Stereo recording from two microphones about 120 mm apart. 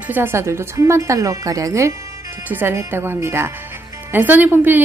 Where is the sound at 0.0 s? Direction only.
15° right (ahead or behind).